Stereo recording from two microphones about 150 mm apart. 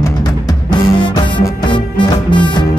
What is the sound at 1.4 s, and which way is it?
Music, 30° left (ahead or behind).